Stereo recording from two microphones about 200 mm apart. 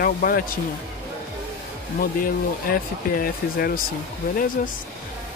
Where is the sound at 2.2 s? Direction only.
45° left (ahead or behind).